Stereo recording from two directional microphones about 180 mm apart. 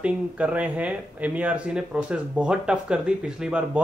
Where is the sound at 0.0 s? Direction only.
5° right (ahead or behind).